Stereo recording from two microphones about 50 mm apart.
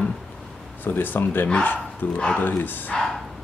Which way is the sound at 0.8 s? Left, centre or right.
Left.